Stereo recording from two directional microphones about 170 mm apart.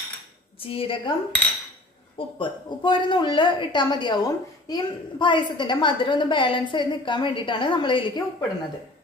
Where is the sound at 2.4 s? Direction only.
25° left (ahead or behind).